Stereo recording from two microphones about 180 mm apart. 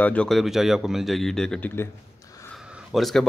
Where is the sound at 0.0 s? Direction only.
5° left (ahead or behind).